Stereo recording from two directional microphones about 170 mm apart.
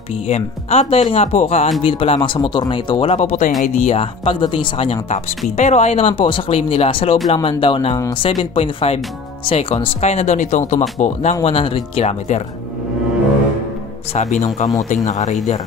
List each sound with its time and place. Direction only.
0.3 s speech: 35° left (ahead or behind)
14.1 s speech: 45° left (ahead or behind)